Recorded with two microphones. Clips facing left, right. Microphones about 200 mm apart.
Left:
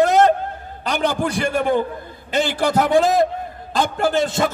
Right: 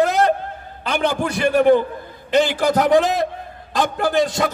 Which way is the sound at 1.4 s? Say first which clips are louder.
Right 8 dB; 45° left (ahead or behind).